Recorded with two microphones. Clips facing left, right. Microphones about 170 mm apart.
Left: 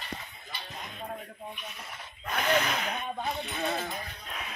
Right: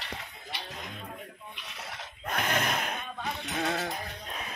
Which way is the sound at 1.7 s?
85° right.